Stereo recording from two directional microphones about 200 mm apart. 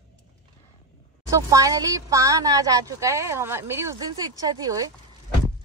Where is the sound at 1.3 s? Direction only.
15° right (ahead or behind).